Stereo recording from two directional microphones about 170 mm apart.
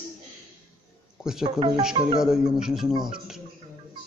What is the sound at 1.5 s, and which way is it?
Speech, 25° right (ahead or behind).